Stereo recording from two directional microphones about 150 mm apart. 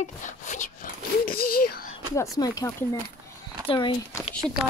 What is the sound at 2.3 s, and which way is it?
Speech, 25° left (ahead or behind).